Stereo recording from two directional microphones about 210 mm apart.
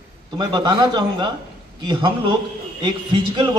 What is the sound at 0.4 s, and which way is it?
Speech, 20° right (ahead or behind).